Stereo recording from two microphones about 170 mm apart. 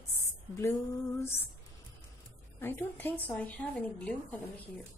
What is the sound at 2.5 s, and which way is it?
Speech, 15° left (ahead or behind).